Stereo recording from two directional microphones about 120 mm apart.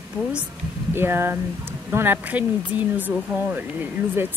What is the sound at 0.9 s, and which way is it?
Speech, 20° right (ahead or behind).